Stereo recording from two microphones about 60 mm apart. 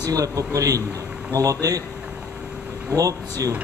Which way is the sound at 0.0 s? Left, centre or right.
Right.